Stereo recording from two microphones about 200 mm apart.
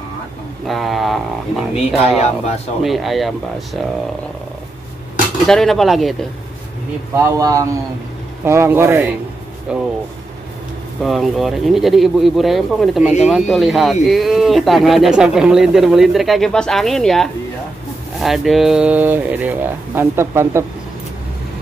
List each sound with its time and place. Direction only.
0.7 s speech: centre (ahead or behind)
2.0 s speech: 30° left (ahead or behind)
2.8 s speech: centre (ahead or behind)
5.5 s speech: centre (ahead or behind)
7.2 s speech: 15° right (ahead or behind)
11.0 s speech: centre (ahead or behind)